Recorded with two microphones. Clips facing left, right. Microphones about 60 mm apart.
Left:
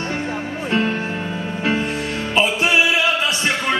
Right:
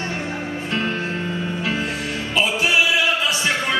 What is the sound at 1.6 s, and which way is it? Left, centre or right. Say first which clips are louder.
Music: left 6 dB; centre.